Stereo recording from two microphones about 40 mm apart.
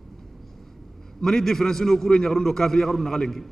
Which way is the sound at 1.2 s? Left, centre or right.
Centre.